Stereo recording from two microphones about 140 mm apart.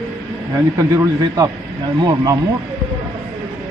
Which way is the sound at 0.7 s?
25° right (ahead or behind).